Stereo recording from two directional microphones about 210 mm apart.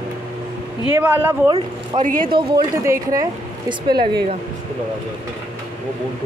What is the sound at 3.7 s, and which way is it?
Speech, 20° right (ahead or behind).